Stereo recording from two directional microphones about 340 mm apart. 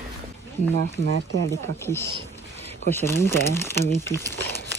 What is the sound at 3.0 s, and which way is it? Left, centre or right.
Speech, centre.